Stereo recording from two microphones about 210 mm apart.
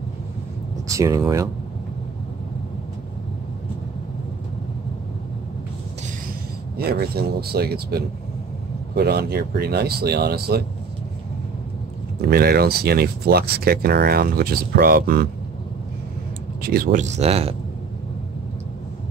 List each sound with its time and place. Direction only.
0.8 s speech: 15° right (ahead or behind)
6.8 s speech: 50° right (ahead or behind)
12.2 s speech: 45° right (ahead or behind)
16.6 s speech: 45° right (ahead or behind)